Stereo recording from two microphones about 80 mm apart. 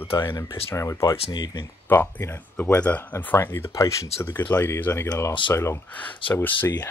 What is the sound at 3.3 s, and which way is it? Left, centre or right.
Speech, left.